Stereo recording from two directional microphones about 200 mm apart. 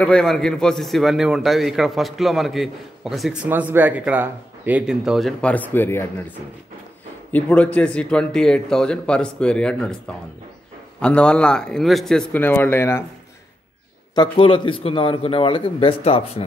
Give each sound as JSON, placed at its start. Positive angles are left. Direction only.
{"t": 0.0, "sound": "a man's voice", "side_deg": 5}
{"t": 7.3, "sound": "a man's voice", "side_deg": 5}
{"t": 11.0, "sound": "a man's voice", "side_deg": 5}
{"t": 14.1, "sound": "speech", "side_deg": 25}